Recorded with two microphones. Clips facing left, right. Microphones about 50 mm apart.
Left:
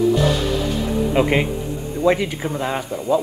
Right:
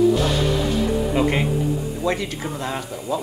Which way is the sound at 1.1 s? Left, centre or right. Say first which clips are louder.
Left 2 dB; centre.